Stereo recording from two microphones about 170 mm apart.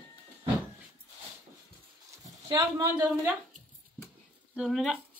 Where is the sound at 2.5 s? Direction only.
25° right (ahead or behind).